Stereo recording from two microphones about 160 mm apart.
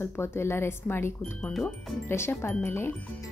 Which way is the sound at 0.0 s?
15° left (ahead or behind).